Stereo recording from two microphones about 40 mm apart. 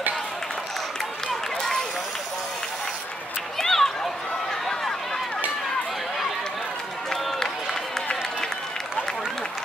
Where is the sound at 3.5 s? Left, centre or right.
Centre.